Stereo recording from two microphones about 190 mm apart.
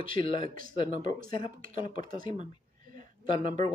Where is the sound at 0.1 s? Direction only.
25° left (ahead or behind).